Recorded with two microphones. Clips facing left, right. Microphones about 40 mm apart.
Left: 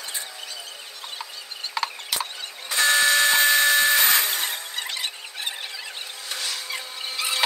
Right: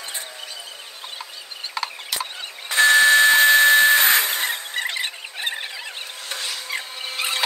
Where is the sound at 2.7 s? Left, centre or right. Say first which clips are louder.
Right 6 dB; right.